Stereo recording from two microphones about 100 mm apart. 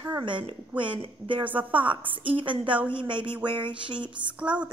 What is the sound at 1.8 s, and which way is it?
A woman's voice, 60° right (ahead or behind).